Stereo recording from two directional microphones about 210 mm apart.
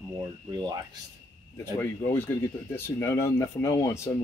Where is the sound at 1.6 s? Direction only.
10° left (ahead or behind).